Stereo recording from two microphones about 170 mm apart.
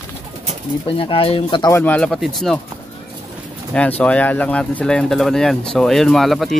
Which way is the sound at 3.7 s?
10° left (ahead or behind).